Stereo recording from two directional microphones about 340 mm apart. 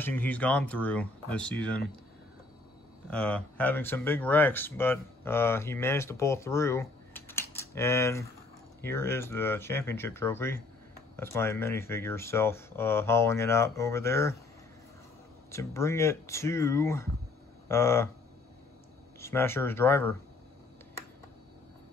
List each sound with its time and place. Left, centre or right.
0.0 s speech: centre
3.1 s speech: centre
15.5 s speech: centre
19.1 s speech: centre